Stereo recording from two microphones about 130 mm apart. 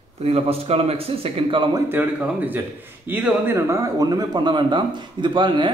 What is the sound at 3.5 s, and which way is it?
Speech, 25° right (ahead or behind).